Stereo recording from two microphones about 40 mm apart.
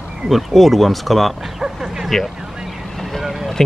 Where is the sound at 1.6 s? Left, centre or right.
Centre.